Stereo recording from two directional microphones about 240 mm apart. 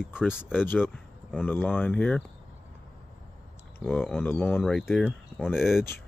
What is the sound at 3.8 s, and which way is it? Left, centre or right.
Speech, centre.